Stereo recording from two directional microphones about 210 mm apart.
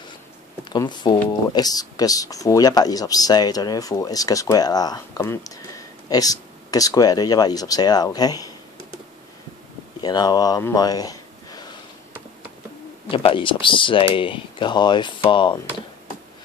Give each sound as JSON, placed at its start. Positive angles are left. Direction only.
{"t": 0.7, "sound": "speech", "side_deg": 20}
{"t": 10.0, "sound": "speech", "side_deg": 20}
{"t": 13.1, "sound": "speech", "side_deg": 25}